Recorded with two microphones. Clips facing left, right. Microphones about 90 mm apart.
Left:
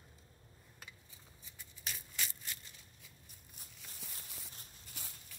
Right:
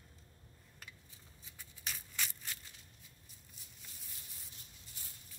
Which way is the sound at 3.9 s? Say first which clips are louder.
Left 8 dB; 85° left.